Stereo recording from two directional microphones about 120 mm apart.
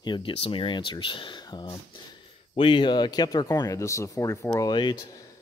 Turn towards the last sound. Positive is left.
turn(degrees=35)  # may be behind; listen again after turning